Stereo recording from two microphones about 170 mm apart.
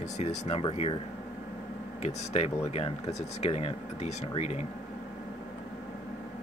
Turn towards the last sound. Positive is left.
turn(degrees=40)  # may be behind; listen again after turning